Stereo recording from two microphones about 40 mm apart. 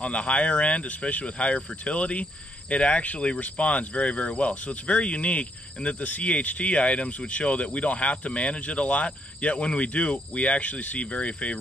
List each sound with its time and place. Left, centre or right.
0.0 s speech: left